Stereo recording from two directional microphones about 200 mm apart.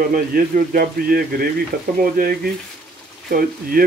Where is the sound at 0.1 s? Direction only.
45° right (ahead or behind).